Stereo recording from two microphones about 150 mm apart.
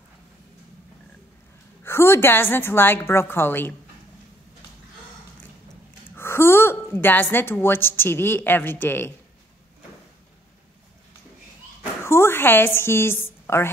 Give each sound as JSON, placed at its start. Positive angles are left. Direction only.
{"t": 1.8, "sound": "a woman's voice", "side_deg": 15}
{"t": 6.1, "sound": "a woman's voice", "side_deg": 15}
{"t": 12.0, "sound": "a sound", "side_deg": 15}